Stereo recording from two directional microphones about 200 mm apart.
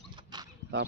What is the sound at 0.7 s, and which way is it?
Speech, 60° right (ahead or behind).